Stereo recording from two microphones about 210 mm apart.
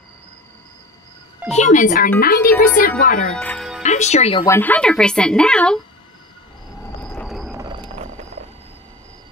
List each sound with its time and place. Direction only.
1.5 s speech: 35° left (ahead or behind)
3.3 s music: 5° left (ahead or behind)
3.8 s speech: 35° left (ahead or behind)
4.5 s speech: 10° left (ahead or behind)
7.0 s whale vocalization: 5° left (ahead or behind)
7.5 s a sound: 20° right (ahead or behind)